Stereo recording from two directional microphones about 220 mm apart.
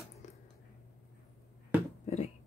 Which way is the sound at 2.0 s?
30° left (ahead or behind).